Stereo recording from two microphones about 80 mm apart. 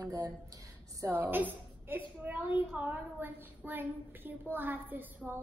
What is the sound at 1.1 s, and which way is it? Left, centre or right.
Child singing, right.